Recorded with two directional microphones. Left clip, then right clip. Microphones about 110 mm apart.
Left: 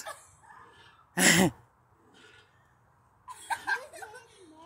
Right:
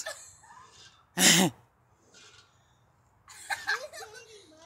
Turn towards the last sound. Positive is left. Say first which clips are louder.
# even
turn(degrees=-25)  # may be behind; listen again after turning